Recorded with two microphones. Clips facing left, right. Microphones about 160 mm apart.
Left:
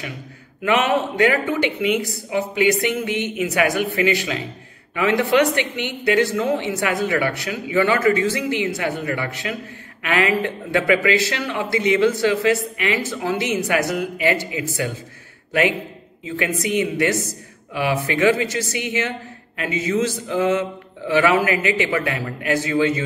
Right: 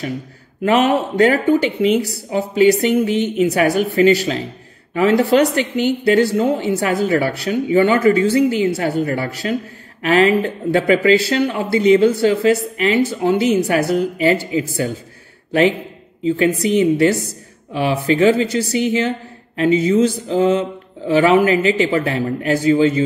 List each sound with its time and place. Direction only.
0.7 s speech: 35° right (ahead or behind)
16.3 s a man's voice: 30° right (ahead or behind)